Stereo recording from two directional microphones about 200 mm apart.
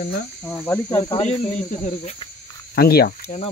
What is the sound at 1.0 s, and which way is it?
Speech, 30° left (ahead or behind).